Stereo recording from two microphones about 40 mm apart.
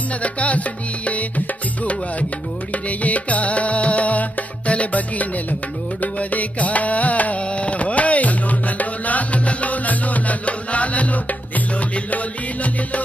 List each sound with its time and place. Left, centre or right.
0.2 s music: left
2.7 s music: left